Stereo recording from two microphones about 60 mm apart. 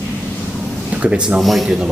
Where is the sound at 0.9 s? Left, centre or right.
Centre.